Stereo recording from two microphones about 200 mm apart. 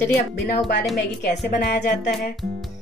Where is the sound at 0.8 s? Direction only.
Centre (ahead or behind).